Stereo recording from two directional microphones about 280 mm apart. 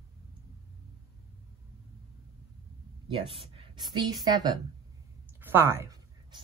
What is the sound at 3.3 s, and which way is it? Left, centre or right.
A woman's voice, centre.